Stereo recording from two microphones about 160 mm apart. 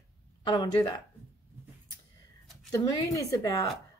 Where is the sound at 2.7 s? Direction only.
20° left (ahead or behind).